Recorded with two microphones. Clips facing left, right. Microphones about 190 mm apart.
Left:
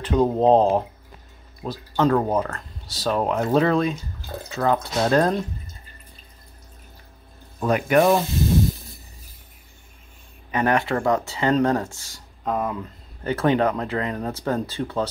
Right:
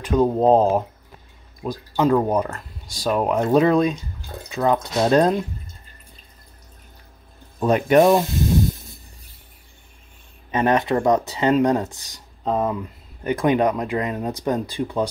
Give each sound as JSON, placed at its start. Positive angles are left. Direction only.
{"t": 0.0, "sound": "speech", "side_deg": -10}
{"t": 7.6, "sound": "speech", "side_deg": -20}
{"t": 10.5, "sound": "speech", "side_deg": -20}
{"t": 13.2, "sound": "speech", "side_deg": -15}